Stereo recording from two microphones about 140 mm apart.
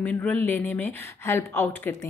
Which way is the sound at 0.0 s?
10° left (ahead or behind).